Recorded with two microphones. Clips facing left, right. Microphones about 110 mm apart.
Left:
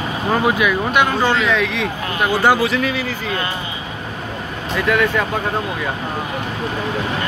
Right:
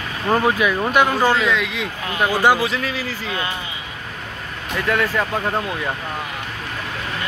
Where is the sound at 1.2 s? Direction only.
10° right (ahead or behind).